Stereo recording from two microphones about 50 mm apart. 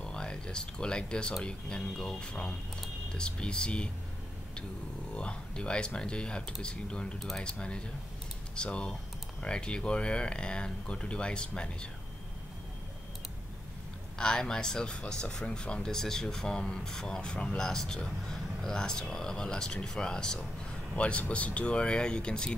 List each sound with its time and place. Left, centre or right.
0.0 s speech: centre
5.1 s speech: left
7.2 s speech: centre
7.4 s speech: left
14.1 s speech: centre